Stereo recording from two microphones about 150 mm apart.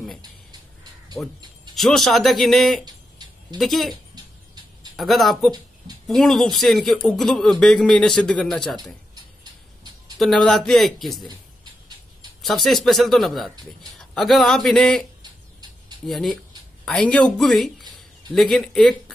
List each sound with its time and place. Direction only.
1.2 s speech: 10° left (ahead or behind)
1.8 s speech: centre (ahead or behind)
4.9 s speech: centre (ahead or behind)
9.1 s a sound: 30° right (ahead or behind)
10.1 s speech: centre (ahead or behind)
12.4 s speech: centre (ahead or behind)
16.1 s speech: centre (ahead or behind)